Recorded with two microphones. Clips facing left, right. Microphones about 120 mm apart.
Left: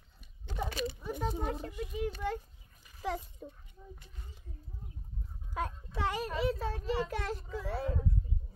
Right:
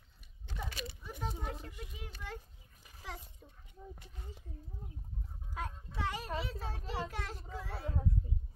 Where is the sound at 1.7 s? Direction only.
55° left (ahead or behind).